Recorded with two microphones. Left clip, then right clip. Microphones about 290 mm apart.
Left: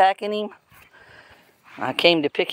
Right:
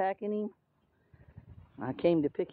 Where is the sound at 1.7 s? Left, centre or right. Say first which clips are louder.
Left 11 dB; centre.